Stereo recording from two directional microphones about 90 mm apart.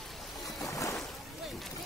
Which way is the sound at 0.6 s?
35° left (ahead or behind).